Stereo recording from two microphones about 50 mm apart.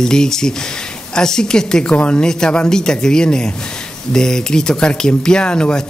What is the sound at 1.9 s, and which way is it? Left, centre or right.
Speech, left.